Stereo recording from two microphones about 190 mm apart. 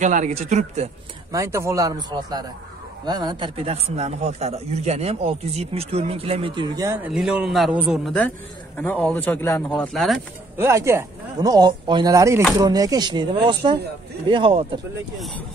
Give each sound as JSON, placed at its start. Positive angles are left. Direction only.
{"t": 0.0, "sound": "speech", "side_deg": -40}
{"t": 1.3, "sound": "speech", "side_deg": -15}
{"t": 7.1, "sound": "a man's voice", "side_deg": -5}
{"t": 9.7, "sound": "a man's voice", "side_deg": 0}
{"t": 10.6, "sound": "speech", "side_deg": -15}
{"t": 15.1, "sound": "a man's voice", "side_deg": 0}